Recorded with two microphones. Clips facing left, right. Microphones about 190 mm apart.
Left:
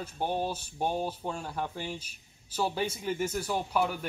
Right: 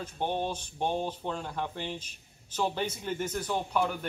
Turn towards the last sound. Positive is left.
turn(degrees=5)  # may be behind; listen again after turning